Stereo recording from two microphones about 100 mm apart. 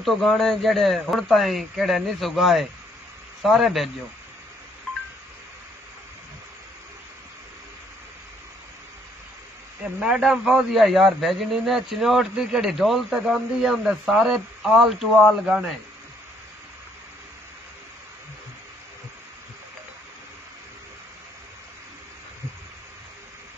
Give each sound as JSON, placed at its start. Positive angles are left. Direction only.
{"t": 0.0, "sound": "a man's voice", "side_deg": 0}
{"t": 9.9, "sound": "a man's voice", "side_deg": -10}